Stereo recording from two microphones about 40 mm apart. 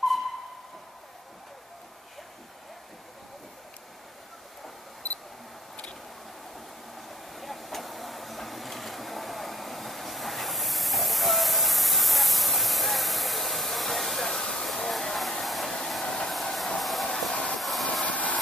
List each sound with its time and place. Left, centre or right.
6.5 s vehicle: centre
16.3 s train: centre
17.4 s a sound: centre
18.0 s vehicle: left